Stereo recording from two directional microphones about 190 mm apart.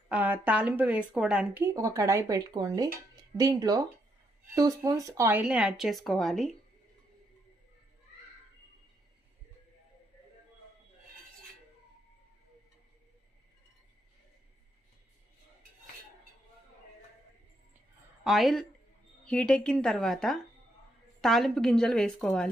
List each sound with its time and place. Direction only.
0.1 s speech: 10° right (ahead or behind)
18.2 s speech: centre (ahead or behind)